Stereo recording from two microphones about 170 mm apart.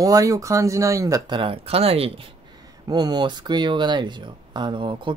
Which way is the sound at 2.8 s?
25° right (ahead or behind).